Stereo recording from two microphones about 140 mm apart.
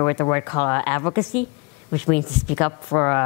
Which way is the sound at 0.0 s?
20° left (ahead or behind).